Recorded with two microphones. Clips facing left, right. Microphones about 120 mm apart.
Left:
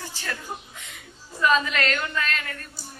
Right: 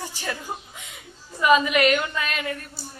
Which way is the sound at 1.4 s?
10° right (ahead or behind).